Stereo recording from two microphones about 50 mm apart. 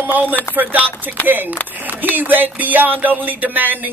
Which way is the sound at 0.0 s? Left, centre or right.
Right.